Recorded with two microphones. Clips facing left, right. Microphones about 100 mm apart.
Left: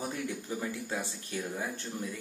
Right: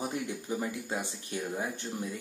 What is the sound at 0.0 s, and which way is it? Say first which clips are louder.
Speech: right 1 dB; 15° right (ahead or behind).